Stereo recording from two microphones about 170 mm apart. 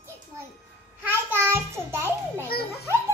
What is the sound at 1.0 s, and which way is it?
A child's voice, 15° right (ahead or behind).